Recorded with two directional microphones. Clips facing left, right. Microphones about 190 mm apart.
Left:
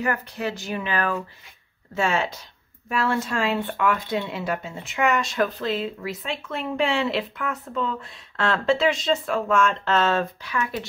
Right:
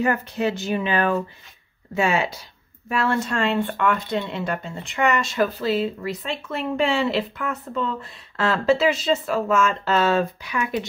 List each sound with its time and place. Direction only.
0.0 s speech: 25° right (ahead or behind)
2.0 s speech: 10° right (ahead or behind)
2.9 s speech: centre (ahead or behind); by 10.9 s 15° right (ahead or behind)